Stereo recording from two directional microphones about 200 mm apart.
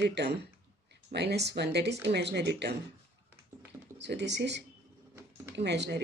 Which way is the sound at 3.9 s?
60° right (ahead or behind).